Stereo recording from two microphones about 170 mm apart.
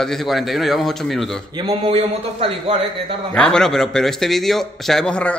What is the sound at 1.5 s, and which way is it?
A man's voice, 30° right (ahead or behind).